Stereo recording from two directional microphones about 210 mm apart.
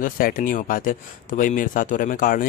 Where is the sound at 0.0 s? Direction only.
40° left (ahead or behind).